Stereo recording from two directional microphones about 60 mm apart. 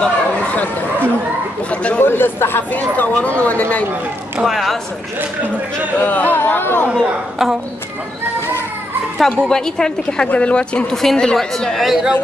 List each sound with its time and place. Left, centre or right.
0.0 s a sound: left
1.7 s speech: left
2.0 s speech: left
4.5 s a woman's voice: centre
5.9 s speech: left
9.2 s a woman's voice: centre